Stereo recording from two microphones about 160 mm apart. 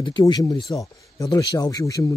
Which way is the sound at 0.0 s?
30° left (ahead or behind).